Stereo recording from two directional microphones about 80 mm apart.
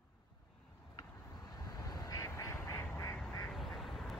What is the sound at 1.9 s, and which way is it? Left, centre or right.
Quack, left.